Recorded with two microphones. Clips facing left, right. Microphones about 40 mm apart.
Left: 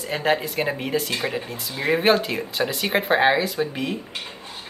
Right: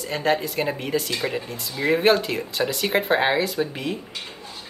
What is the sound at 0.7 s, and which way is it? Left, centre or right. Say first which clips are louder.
Speech: left 1 dB; centre.